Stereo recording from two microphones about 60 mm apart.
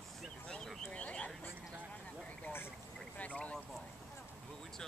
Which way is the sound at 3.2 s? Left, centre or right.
Left.